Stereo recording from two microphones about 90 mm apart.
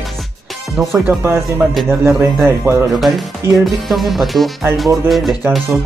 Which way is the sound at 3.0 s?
Centre (ahead or behind).